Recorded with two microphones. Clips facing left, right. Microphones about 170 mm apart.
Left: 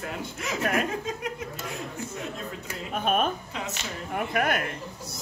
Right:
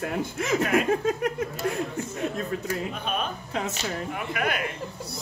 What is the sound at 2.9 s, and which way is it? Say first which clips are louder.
Speech: left 5 dB; 50° left (ahead or behind).